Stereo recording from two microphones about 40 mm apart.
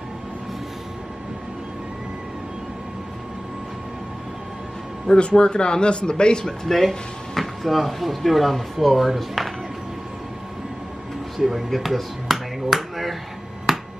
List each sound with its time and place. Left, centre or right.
5.0 s a man's voice: centre
6.4 s speech: centre
11.3 s a sound: centre